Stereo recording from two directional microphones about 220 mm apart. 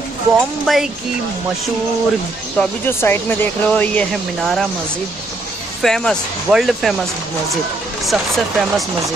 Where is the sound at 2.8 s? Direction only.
10° left (ahead or behind).